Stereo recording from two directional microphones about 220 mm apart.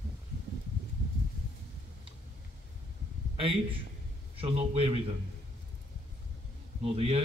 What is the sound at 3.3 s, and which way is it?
A man's voice, 25° right (ahead or behind).